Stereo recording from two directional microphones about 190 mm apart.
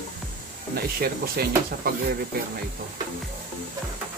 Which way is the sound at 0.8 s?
55° right (ahead or behind).